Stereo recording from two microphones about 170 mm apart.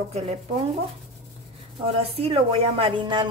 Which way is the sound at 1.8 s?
35° right (ahead or behind).